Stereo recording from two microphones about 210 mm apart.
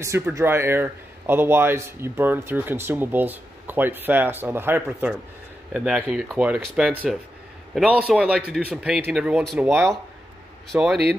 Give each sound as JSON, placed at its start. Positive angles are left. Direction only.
{"t": 0.0, "sound": "speech", "side_deg": -15}
{"t": 10.7, "sound": "speech", "side_deg": 0}